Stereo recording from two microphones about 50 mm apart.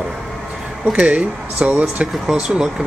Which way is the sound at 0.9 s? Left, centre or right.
Right.